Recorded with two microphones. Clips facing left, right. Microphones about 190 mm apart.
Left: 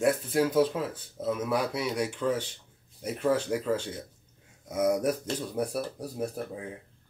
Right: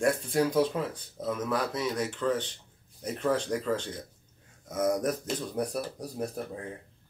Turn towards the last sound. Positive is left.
turn(degrees=5)  # may be behind; listen again after turning